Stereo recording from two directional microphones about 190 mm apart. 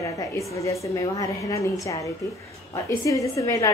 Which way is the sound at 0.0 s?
15° left (ahead or behind).